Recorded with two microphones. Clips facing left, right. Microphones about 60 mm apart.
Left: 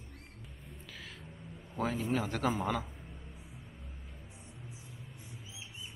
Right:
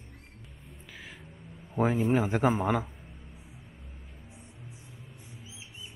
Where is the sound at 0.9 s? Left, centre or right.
Centre.